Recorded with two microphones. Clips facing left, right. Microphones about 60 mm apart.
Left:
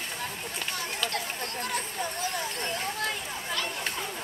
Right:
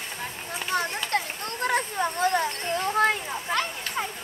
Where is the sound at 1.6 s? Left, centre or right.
Right.